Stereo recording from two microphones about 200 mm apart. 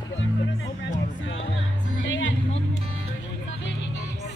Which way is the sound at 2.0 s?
70° left (ahead or behind).